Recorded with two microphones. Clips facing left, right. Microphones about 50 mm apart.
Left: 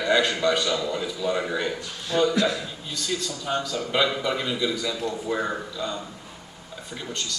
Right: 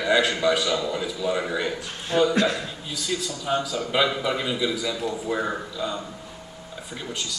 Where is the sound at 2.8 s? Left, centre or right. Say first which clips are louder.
Even; centre.